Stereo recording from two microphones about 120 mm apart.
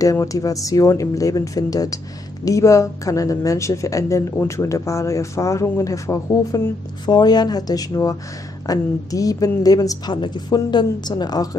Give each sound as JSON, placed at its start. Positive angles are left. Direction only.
{"t": 0.0, "sound": "a woman's voice", "side_deg": 30}